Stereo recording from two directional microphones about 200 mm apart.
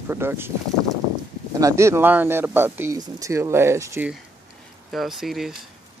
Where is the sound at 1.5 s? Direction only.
15° right (ahead or behind).